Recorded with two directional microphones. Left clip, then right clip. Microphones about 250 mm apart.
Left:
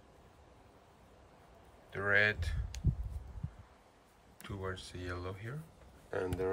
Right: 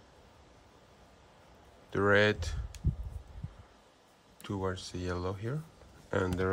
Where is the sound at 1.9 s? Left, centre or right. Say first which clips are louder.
Right 4 dB; centre.